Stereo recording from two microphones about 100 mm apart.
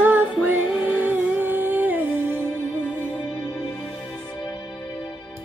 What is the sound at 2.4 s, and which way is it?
Music, 15° left (ahead or behind).